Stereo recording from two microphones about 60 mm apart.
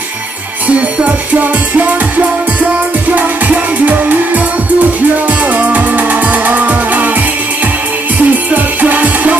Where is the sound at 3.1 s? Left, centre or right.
Right.